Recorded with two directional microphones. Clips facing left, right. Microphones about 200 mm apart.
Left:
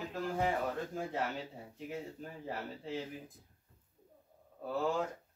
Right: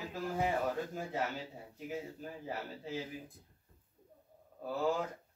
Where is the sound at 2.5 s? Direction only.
Centre (ahead or behind).